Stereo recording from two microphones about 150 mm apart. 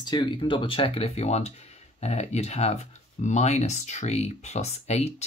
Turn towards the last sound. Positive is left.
turn(degrees=45)  # may be behind; listen again after turning